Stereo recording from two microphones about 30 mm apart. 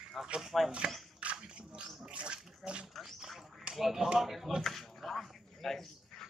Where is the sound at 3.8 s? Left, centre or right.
Centre.